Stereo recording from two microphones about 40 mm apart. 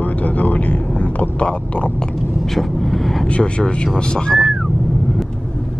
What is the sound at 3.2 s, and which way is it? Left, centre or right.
Speech, left.